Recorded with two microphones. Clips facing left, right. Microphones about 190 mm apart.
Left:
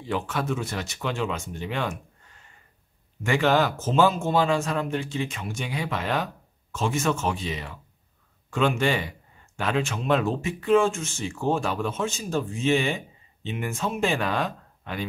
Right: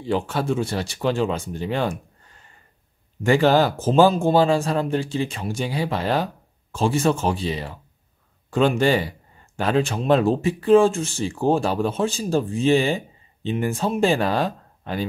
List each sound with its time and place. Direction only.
0.0 s speech: 30° right (ahead or behind)
3.3 s speech: 35° right (ahead or behind)